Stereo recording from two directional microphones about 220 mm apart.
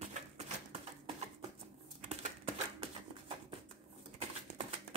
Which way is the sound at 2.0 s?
30° right (ahead or behind).